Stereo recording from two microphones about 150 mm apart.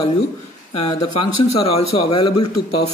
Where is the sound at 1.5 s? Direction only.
40° left (ahead or behind).